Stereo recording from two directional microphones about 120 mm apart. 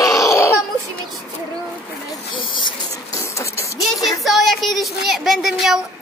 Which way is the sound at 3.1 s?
25° left (ahead or behind).